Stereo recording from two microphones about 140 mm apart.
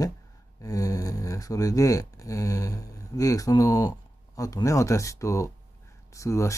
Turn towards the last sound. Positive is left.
turn(degrees=20)  # may be behind; listen again after turning